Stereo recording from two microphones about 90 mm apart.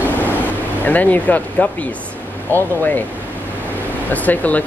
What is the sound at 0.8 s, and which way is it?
Speech, 20° left (ahead or behind).